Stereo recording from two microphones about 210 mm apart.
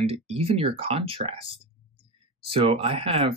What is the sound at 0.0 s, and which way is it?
Speech, 30° right (ahead or behind).